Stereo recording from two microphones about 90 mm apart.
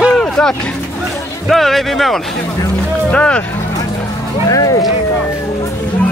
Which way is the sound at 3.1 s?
15° left (ahead or behind).